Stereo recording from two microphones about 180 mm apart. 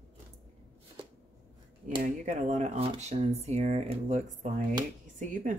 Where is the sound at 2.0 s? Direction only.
45° right (ahead or behind).